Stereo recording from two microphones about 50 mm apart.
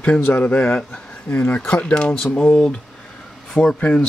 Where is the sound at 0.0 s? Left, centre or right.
Left.